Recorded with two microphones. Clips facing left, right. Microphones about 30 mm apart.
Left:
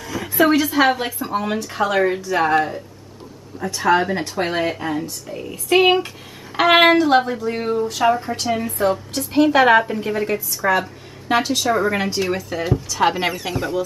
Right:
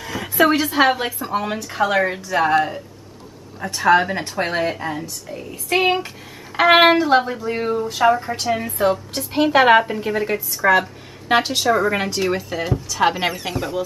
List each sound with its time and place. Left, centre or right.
0.0 s a sound: centre
0.7 s speech: centre
3.5 s a woman's voice: centre
11.7 s speech: centre